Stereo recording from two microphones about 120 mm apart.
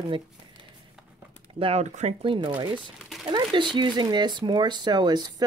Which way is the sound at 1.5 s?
50° right (ahead or behind).